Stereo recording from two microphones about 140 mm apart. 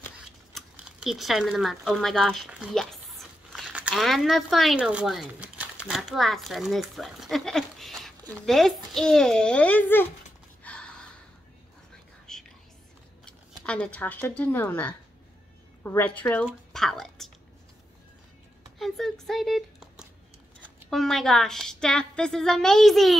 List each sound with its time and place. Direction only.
0.2 s a sound: 5° right (ahead or behind)
4.7 s a woman's voice: 10° right (ahead or behind); by 10.0 s 15° left (ahead or behind)
10.6 s gasp: 5° left (ahead or behind)
12.3 s whispering: 5° left (ahead or behind)
13.2 s a woman's voice: 10° left (ahead or behind)
18.8 s a woman's voice: centre (ahead or behind)